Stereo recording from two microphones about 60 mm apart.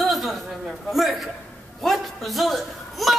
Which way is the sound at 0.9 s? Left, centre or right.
Centre.